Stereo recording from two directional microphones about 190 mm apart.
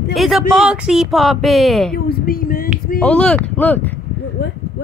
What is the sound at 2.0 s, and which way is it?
Speech, 50° left (ahead or behind).